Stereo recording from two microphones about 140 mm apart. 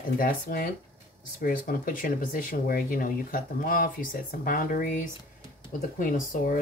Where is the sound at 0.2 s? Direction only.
90° left.